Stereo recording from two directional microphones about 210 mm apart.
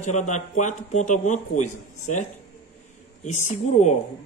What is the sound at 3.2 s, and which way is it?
Speech, 35° left (ahead or behind).